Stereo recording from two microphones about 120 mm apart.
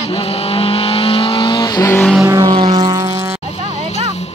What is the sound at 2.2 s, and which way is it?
Vehicle, 35° right (ahead or behind).